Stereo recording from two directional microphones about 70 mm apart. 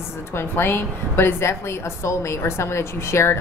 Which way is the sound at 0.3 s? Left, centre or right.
Left.